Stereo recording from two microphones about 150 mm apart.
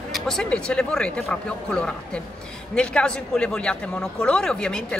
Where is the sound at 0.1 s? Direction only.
5° left (ahead or behind).